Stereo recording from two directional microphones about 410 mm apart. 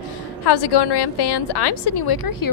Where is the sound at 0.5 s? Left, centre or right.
Left.